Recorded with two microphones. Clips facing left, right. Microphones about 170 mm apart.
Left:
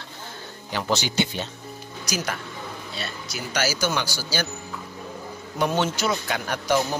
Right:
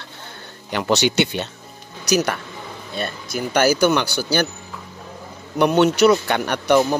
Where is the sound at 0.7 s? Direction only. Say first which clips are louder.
Right 7 dB; 65° right (ahead or behind).